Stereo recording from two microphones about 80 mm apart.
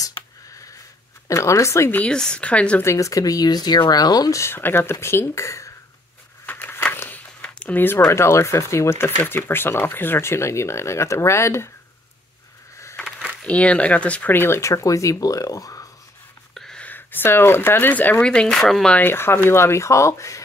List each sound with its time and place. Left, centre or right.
1.2 s speech: left
1.9 s speech: centre
2.8 s speech: left
4.4 s speech: left
6.4 s a sound: left
8.1 s speech: left
13.4 s speech: centre; by 15.9 s left
16.5 s a sound: centre
16.8 s speech: left
18.2 s speech: centre
18.9 s speech: left